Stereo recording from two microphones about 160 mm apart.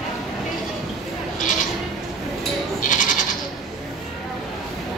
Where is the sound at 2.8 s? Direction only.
55° left (ahead or behind).